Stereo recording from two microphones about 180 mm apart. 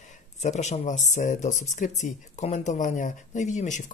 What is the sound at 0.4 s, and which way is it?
Speech, 40° left (ahead or behind).